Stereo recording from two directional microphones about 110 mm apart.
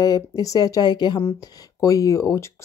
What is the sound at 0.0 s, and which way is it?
Speech, 35° left (ahead or behind).